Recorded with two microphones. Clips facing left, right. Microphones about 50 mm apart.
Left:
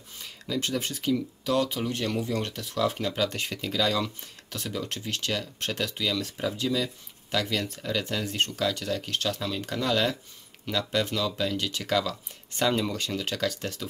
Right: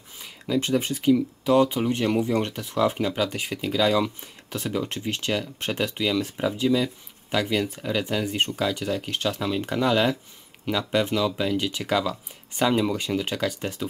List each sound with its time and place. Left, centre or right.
0.2 s speech: centre